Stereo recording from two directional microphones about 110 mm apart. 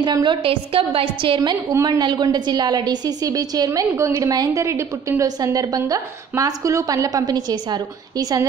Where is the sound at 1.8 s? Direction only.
40° right (ahead or behind).